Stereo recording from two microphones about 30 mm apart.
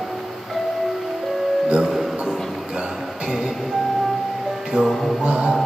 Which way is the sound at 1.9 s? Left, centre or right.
Centre.